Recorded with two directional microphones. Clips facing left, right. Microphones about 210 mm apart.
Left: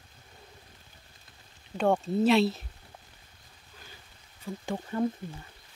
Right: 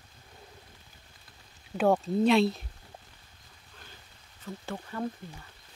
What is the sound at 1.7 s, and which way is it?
Speech, 5° right (ahead or behind).